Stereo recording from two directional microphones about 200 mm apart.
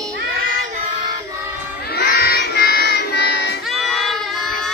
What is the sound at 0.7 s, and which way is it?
Music, 30° right (ahead or behind).